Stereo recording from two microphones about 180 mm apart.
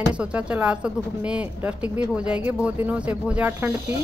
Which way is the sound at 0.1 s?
5° right (ahead or behind).